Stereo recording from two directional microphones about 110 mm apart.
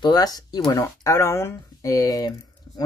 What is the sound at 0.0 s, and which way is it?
Speech, 35° left (ahead or behind).